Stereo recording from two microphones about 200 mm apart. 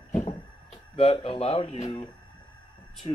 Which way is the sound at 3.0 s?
25° left (ahead or behind).